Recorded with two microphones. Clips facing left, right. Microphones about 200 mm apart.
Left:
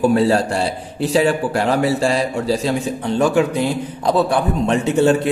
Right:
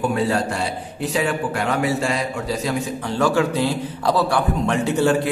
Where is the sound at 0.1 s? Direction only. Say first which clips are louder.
Left 5 dB; 30° left (ahead or behind).